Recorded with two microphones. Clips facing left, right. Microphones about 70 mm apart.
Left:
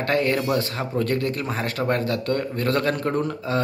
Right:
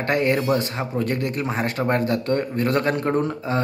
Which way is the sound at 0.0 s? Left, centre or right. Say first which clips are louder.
Right 1 dB; right.